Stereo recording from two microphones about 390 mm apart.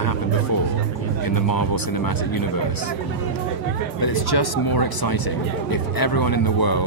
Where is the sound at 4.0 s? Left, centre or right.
Left.